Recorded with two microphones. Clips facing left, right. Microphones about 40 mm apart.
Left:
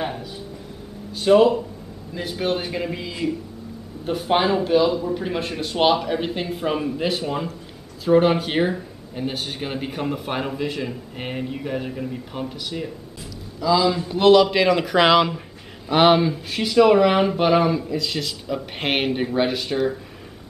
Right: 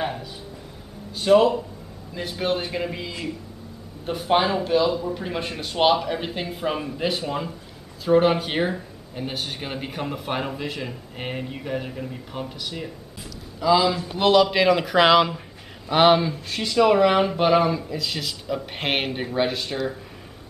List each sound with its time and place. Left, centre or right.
0.0 s a sound: centre
1.1 s speech: centre
13.6 s a man's voice: centre
13.8 s speech: centre